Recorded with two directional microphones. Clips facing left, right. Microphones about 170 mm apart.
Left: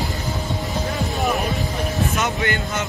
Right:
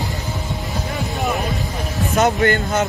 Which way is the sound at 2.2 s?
45° right (ahead or behind).